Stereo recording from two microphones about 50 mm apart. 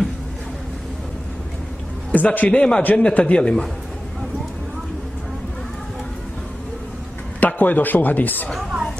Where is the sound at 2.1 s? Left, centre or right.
Left.